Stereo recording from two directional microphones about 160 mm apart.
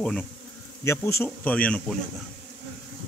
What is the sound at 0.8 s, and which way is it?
Speech, 15° left (ahead or behind).